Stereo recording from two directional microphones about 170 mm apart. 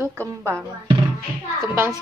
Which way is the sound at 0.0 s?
15° right (ahead or behind).